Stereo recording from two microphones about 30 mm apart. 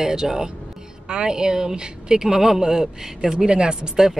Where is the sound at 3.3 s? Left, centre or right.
Right.